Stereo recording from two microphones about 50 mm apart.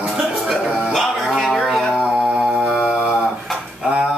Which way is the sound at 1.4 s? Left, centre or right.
Centre.